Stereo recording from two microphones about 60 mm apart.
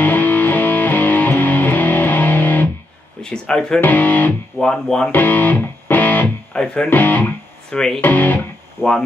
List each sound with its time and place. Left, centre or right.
0.0 s music: left
3.2 s a sound: centre
3.8 s speech: left
4.6 s speech: centre
5.1 s music: left
6.5 s speech: centre
6.9 s speech: left
7.7 s speech: centre
8.0 s speech: left
8.8 s speech: left